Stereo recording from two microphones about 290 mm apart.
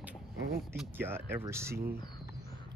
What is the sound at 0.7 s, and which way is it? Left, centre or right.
Speech, centre.